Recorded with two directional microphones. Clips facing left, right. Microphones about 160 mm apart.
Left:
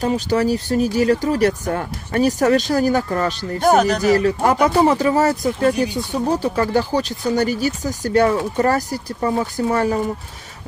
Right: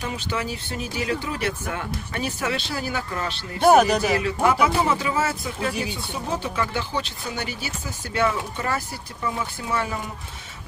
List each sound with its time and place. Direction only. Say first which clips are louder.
0.0 s speech: left 11 dB; 40° left (ahead or behind)
3.6 s speech: left 1 dB; 10° right (ahead or behind)
4.1 s speech: left 6 dB; 40° left (ahead or behind)